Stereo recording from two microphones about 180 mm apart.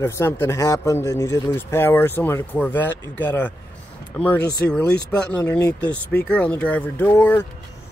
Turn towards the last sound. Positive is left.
turn(degrees=10)  # may be behind; listen again after turning